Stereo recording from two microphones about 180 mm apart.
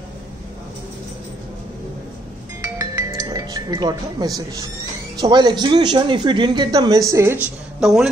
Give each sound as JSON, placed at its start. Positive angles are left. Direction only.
{"t": 2.6, "sound": "music", "side_deg": -20}
{"t": 5.2, "sound": "speech", "side_deg": -25}
{"t": 7.8, "sound": "speech", "side_deg": 0}